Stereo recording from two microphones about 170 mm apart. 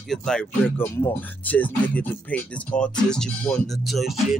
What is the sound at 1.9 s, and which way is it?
Speech, 5° left (ahead or behind).